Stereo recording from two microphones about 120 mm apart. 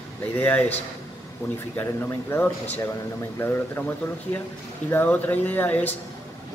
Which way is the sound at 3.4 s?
20° left (ahead or behind).